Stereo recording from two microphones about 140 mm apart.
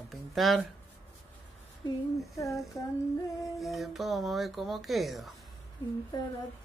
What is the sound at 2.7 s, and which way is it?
Speech, 25° left (ahead or behind).